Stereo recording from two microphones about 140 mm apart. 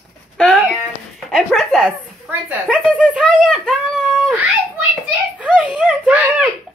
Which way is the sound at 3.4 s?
Centre (ahead or behind).